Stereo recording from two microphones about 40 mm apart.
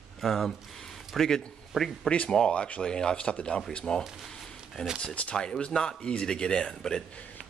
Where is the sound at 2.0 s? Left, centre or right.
Left.